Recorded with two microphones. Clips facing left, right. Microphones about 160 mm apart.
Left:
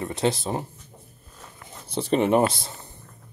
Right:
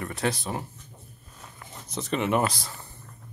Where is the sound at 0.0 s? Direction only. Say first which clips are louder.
Left 4 dB; 25° left (ahead or behind).